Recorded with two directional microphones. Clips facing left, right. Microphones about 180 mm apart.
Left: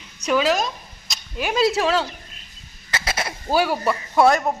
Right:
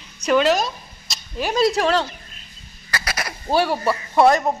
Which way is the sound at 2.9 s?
25° left (ahead or behind).